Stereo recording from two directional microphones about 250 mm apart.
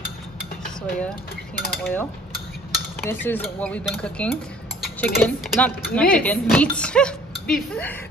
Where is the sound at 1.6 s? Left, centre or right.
Centre.